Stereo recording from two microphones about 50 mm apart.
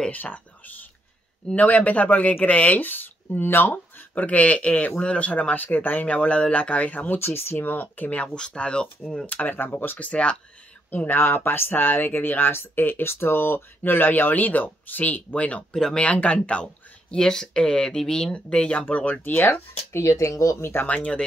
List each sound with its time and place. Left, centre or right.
0.1 s speech: left
7.2 s speech: left
7.6 s speech: left
8.4 s speech: centre
9.2 s speech: left
9.9 s speech: left
15.7 s speech: centre
16.0 s speech: left
19.5 s speech: left
20.8 s speech: left